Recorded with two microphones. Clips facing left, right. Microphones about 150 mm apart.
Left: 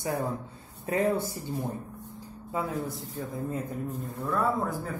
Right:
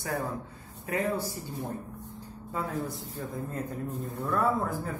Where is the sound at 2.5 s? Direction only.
Centre (ahead or behind).